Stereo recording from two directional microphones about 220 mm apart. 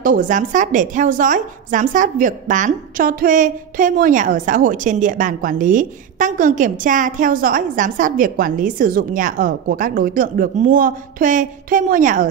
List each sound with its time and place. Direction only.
0.0 s a woman's voice: 40° right (ahead or behind)